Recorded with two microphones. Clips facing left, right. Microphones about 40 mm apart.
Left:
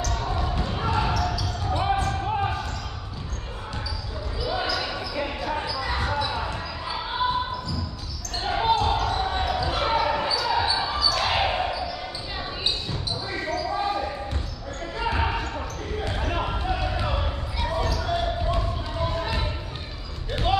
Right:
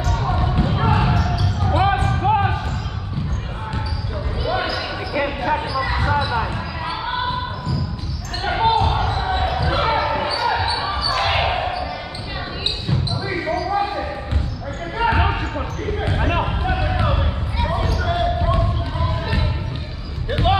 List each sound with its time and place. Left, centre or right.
0.0 s basketball bounce: right
4.4 s basketball bounce: right
8.4 s basketball bounce: right
13.2 s basketball bounce: right
20.2 s basketball bounce: right